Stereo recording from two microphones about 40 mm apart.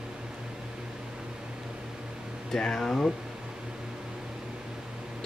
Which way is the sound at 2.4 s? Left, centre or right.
Centre.